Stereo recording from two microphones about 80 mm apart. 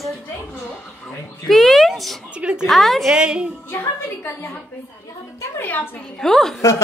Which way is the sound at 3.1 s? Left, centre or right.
Centre.